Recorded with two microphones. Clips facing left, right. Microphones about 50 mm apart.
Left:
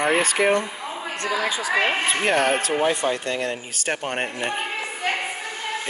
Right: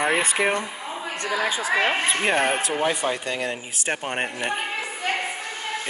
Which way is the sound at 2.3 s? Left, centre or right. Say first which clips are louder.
Left 2 dB; centre.